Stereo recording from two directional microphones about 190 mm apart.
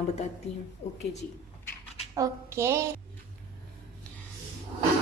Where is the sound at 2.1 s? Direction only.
15° right (ahead or behind).